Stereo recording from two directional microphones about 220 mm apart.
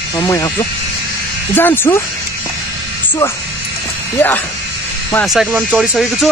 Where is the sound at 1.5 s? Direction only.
10° left (ahead or behind).